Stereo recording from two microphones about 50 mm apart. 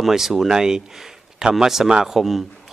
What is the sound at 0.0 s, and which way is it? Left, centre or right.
Speech, centre.